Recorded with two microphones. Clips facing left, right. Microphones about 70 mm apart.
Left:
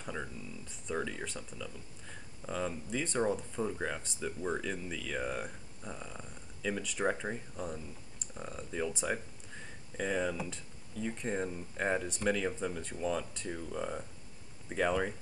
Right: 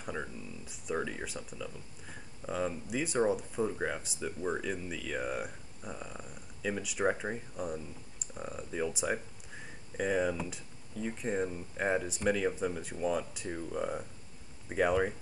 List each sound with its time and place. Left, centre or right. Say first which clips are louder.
0.0 s speech: right 2 dB; centre